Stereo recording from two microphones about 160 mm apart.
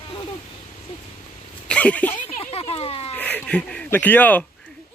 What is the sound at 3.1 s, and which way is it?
Speech, 10° left (ahead or behind).